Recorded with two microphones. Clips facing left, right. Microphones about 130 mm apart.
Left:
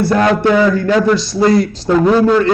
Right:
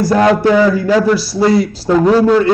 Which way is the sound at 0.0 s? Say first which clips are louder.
Right 1 dB; 30° right (ahead or behind).